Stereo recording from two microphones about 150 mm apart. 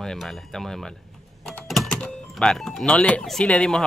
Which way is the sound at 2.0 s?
5° left (ahead or behind).